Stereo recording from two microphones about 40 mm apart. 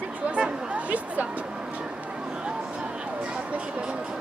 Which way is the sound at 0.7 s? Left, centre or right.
Right.